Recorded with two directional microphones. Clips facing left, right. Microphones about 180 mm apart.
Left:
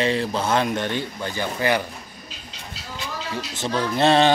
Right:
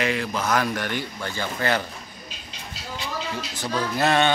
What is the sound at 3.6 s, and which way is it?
Speech, 25° left (ahead or behind).